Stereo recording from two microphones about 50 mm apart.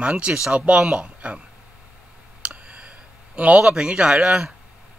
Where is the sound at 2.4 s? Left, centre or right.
Right.